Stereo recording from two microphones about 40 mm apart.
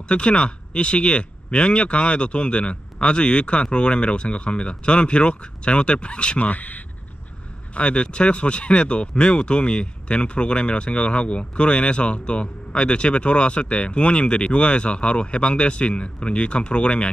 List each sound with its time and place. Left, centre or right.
0.1 s speech: left
6.4 s speech: left
7.7 s speech: left